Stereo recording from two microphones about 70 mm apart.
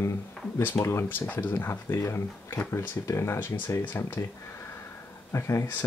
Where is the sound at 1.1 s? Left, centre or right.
Left.